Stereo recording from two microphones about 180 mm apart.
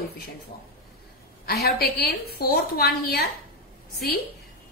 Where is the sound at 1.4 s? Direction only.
60° left (ahead or behind).